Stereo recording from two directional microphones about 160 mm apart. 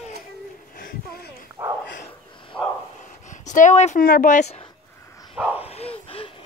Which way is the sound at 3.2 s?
50° left (ahead or behind).